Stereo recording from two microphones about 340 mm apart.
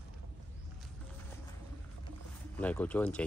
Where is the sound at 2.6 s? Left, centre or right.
Centre.